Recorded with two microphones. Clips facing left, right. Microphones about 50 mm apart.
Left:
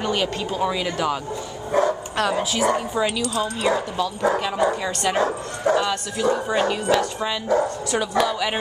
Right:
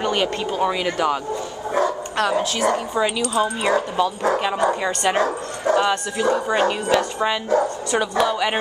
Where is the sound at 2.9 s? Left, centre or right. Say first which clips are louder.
Right 2 dB; centre.